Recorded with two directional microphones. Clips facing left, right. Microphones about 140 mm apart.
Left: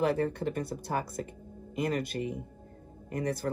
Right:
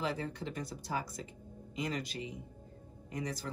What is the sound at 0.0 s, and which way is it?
Speech, 55° left (ahead or behind).